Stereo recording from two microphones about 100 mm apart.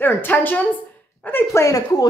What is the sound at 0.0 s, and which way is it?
Speech, 20° left (ahead or behind).